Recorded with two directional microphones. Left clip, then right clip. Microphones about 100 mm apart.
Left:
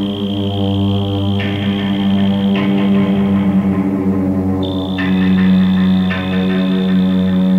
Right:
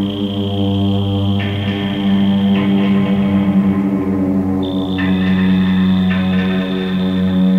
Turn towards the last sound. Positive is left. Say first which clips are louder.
# even
turn(degrees=-30)  # may be behind; listen again after turning